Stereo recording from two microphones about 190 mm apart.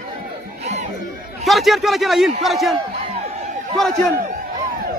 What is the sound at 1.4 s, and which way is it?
Speech, centre (ahead or behind).